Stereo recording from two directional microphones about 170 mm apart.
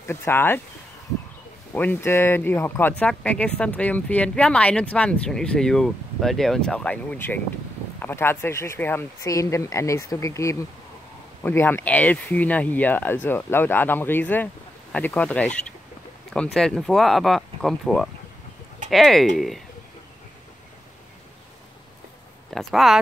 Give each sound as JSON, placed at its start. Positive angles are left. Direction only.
{"t": 0.0, "sound": "speech", "side_deg": 15}
{"t": 1.7, "sound": "speech", "side_deg": 10}
{"t": 22.5, "sound": "speech", "side_deg": 0}